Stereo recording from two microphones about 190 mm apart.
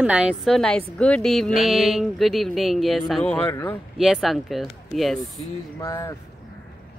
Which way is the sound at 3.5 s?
15° left (ahead or behind).